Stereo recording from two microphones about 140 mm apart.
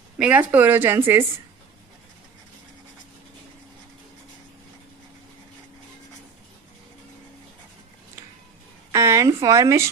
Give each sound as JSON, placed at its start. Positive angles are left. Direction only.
{"t": 0.2, "sound": "speech", "side_deg": -10}
{"t": 8.9, "sound": "a woman's voice", "side_deg": -20}